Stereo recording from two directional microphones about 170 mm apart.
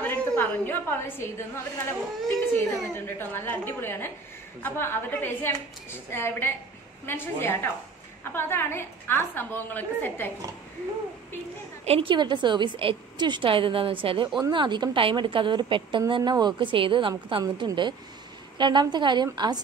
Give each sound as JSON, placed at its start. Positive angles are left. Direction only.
{"t": 0.0, "sound": "a woman's voice", "side_deg": 10}
{"t": 11.8, "sound": "a woman's voice", "side_deg": -35}